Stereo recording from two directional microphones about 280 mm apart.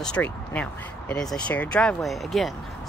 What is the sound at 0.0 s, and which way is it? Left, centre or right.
Speech, centre.